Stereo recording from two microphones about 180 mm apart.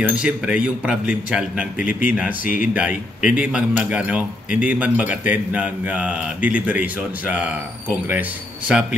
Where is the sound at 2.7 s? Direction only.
5° right (ahead or behind).